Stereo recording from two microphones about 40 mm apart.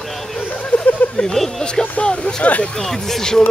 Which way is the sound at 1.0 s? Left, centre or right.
Left.